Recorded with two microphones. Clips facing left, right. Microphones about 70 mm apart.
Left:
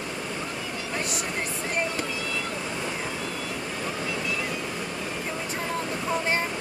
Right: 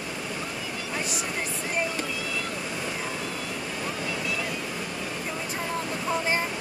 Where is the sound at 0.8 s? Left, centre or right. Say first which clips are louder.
Left 1 dB; centre.